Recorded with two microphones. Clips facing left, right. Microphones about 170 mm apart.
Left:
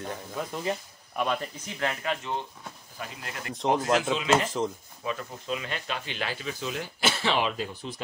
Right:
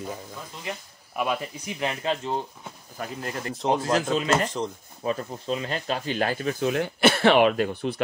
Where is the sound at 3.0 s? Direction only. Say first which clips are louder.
Right 7 dB; 40° right (ahead or behind).